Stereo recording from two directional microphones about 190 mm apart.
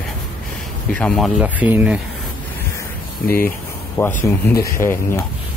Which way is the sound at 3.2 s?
50° left (ahead or behind).